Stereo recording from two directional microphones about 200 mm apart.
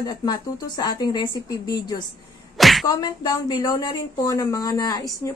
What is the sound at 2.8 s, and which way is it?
A woman's voice, 20° left (ahead or behind).